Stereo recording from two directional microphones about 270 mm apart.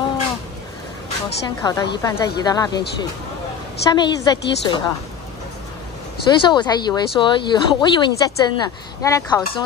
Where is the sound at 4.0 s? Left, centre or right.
Centre.